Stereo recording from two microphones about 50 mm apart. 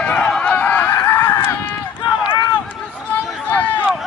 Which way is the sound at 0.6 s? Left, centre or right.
Left.